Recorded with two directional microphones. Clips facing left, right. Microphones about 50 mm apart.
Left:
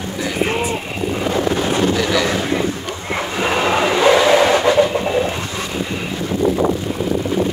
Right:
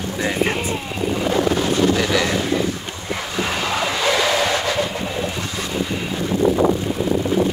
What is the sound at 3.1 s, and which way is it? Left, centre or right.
Vehicle, left.